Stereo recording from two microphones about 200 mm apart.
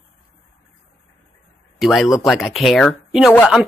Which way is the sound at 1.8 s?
Centre (ahead or behind).